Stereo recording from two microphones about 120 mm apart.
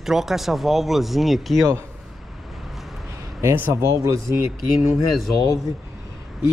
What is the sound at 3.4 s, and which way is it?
Speech, 20° right (ahead or behind).